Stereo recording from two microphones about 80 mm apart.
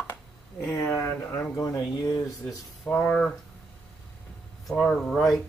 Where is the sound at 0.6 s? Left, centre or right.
Left.